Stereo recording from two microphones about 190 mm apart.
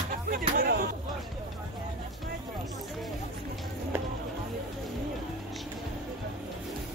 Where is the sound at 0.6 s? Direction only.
55° right (ahead or behind).